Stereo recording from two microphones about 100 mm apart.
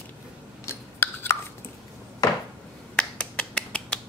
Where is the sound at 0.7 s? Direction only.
25° left (ahead or behind).